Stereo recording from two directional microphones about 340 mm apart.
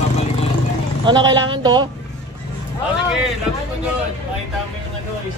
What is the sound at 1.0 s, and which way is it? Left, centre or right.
Speech, centre.